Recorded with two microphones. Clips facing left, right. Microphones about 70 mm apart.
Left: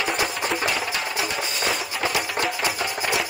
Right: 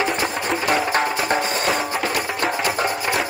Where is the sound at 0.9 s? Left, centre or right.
Right.